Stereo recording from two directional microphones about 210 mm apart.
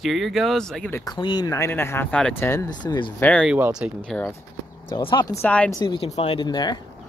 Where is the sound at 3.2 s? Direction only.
5° left (ahead or behind).